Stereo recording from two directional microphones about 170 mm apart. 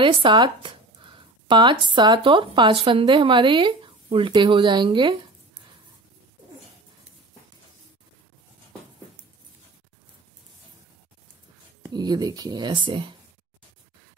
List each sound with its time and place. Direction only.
0.0 s speech: 30° right (ahead or behind)
11.9 s speech: 25° right (ahead or behind)